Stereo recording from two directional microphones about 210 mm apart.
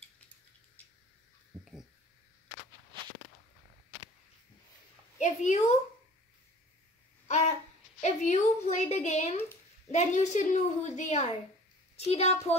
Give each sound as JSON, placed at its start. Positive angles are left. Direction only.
{"t": 1.6, "sound": "a sound", "side_deg": 0}
{"t": 5.2, "sound": "a woman's voice", "side_deg": 35}
{"t": 7.2, "sound": "babbling", "side_deg": 35}
{"t": 8.0, "sound": "a woman's voice", "side_deg": 35}